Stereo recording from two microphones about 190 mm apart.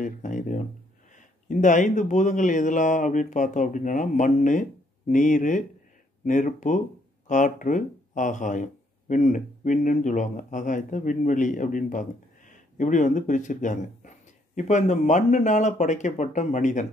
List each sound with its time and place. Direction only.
0.0 s speech: 40° left (ahead or behind)